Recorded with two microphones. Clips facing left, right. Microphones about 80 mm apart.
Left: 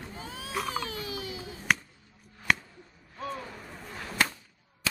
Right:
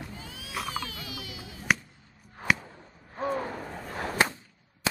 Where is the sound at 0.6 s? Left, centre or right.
Left.